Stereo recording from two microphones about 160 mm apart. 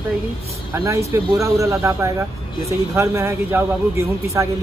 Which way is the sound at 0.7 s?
15° right (ahead or behind).